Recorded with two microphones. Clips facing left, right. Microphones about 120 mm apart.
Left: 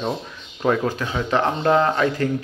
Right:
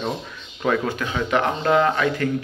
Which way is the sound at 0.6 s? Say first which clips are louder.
Left 1 dB; 25° left (ahead or behind).